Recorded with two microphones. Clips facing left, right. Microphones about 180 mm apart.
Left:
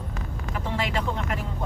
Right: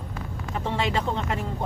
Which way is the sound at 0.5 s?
25° right (ahead or behind).